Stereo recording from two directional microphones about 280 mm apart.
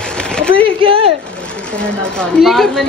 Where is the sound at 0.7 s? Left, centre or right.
Centre.